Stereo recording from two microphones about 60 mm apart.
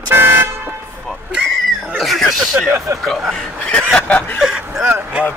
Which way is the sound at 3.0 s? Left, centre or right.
Centre.